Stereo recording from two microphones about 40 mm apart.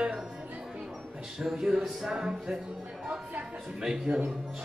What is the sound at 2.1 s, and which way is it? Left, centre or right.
Speech, centre.